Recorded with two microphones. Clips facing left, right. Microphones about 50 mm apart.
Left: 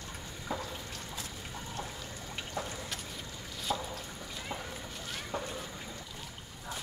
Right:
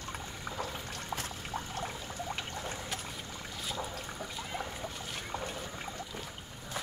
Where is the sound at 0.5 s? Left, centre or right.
Right.